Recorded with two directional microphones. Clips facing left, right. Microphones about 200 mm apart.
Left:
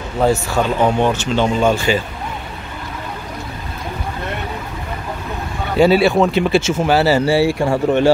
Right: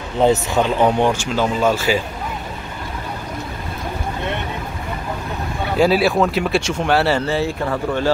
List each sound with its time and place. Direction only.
0.2 s a man's voice: 20° right (ahead or behind); by 2.0 s 5° right (ahead or behind)
5.8 s speech: centre (ahead or behind)
7.6 s speech: 25° left (ahead or behind)